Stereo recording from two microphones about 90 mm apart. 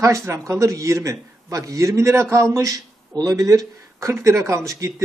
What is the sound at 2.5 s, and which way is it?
Speech, 45° right (ahead or behind).